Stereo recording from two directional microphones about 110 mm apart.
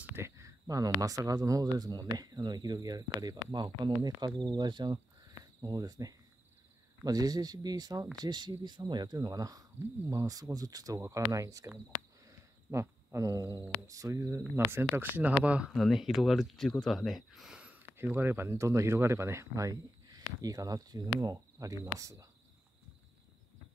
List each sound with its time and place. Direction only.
0.1 s speech: 25° right (ahead or behind)
15.7 s speech: centre (ahead or behind); by 22.3 s 30° right (ahead or behind)